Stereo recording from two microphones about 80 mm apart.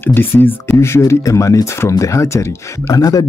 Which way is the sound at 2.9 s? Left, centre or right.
Left.